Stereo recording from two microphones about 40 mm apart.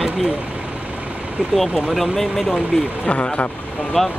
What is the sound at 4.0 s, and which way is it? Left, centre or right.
Speech, centre.